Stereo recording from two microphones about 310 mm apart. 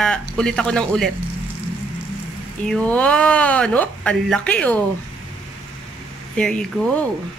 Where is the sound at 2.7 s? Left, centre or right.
Centre.